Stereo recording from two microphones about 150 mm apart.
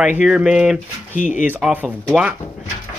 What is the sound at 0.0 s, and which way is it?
Speech, 10° right (ahead or behind).